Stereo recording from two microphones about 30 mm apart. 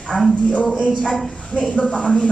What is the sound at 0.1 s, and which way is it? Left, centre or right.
Speech, left.